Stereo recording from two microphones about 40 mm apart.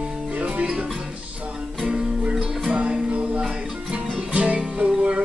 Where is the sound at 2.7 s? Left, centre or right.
Right.